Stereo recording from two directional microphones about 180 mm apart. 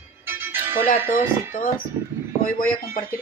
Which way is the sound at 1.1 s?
45° left (ahead or behind).